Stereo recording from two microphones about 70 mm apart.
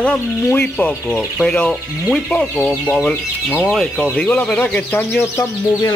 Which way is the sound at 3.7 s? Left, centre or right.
Centre.